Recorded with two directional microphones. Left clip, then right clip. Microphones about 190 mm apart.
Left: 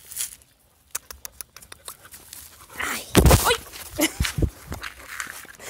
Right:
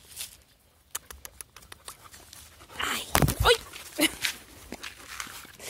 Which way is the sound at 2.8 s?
5° left (ahead or behind).